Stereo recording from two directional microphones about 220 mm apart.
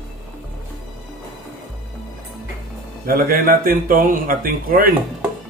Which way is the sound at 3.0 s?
40° right (ahead or behind).